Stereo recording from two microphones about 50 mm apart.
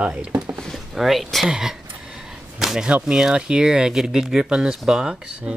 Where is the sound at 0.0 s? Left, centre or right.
Right.